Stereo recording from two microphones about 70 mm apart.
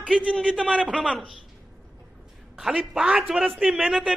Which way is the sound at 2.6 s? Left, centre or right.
Centre.